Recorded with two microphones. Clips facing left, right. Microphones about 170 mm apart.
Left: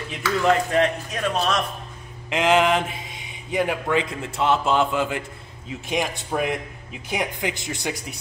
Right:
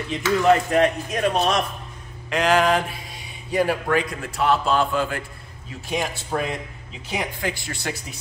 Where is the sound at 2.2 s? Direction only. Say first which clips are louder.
Even; 20° left (ahead or behind).